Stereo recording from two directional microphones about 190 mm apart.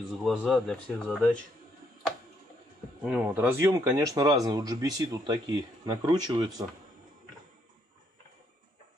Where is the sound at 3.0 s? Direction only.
5° right (ahead or behind); by 6.6 s 20° right (ahead or behind).